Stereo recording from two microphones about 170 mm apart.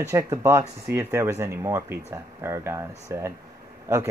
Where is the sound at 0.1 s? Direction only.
15° right (ahead or behind).